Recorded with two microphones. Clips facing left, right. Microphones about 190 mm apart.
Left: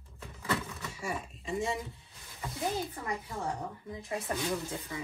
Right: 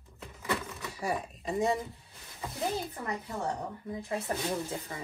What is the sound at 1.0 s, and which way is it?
Speech, 40° right (ahead or behind).